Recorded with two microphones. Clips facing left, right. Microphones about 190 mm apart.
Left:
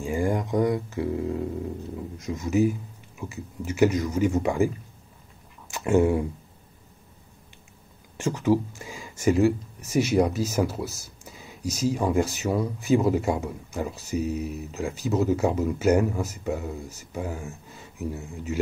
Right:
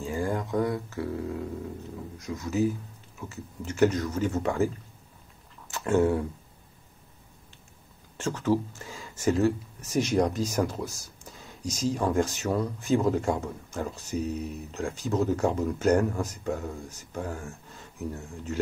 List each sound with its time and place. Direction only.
0.0 s speech: 15° left (ahead or behind)
5.7 s speech: 15° left (ahead or behind)
8.2 s speech: 10° left (ahead or behind)